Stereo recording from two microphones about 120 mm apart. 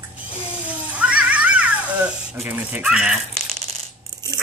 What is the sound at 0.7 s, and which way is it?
Cat, 10° right (ahead or behind).